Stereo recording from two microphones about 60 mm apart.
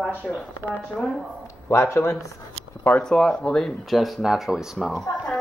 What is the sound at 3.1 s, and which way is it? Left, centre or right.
A woman's voice, centre.